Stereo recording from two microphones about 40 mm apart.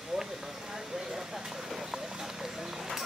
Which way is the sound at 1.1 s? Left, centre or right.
Centre.